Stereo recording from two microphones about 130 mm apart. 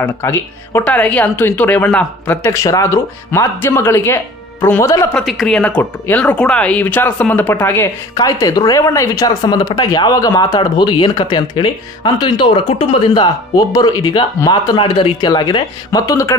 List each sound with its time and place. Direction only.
0.0 s speech: 20° left (ahead or behind)
5.1 s speech: centre (ahead or behind)
5.6 s speech: 10° left (ahead or behind)
8.2 s speech: 25° left (ahead or behind)